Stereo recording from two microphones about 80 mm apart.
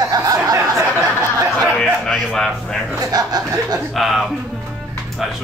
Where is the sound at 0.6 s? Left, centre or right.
Right.